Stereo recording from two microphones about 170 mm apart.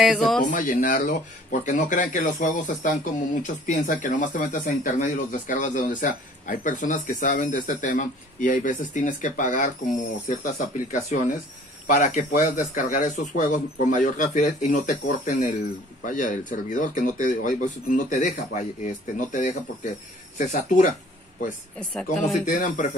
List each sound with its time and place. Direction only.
0.0 s speech: centre (ahead or behind)
0.5 s speech: 55° left (ahead or behind)
21.7 s speech: 5° left (ahead or behind)
22.4 s speech: 55° left (ahead or behind)